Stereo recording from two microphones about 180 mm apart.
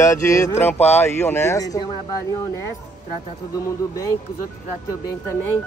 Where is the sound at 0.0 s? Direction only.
15° left (ahead or behind).